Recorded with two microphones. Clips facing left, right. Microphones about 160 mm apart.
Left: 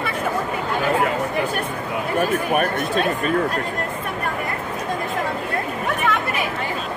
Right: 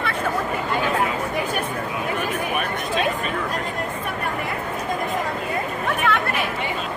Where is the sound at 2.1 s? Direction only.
45° left (ahead or behind).